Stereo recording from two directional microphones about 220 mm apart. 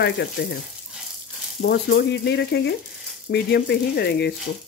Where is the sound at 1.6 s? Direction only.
55° left (ahead or behind).